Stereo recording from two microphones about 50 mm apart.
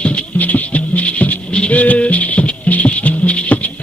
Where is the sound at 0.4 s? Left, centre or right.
Left.